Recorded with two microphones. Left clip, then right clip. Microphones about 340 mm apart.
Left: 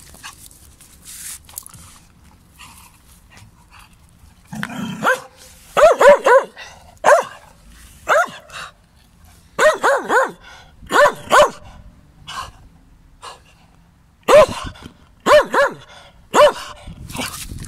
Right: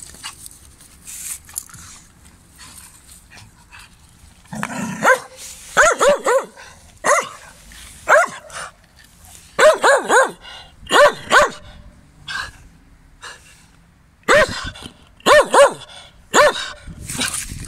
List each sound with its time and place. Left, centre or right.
0.2 s dog: centre
4.5 s dog: centre
5.9 s dog: left
8.0 s dog: centre
12.3 s a sound: centre
14.2 s dog: centre